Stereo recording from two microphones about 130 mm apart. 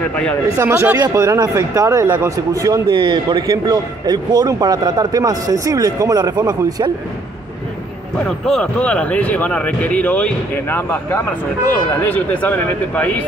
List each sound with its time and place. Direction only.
0.1 s speech: 10° left (ahead or behind)
0.6 s a man's voice: 20° right (ahead or behind)
8.5 s speech: 5° left (ahead or behind)